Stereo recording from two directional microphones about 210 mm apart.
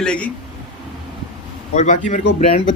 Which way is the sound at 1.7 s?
35° left (ahead or behind).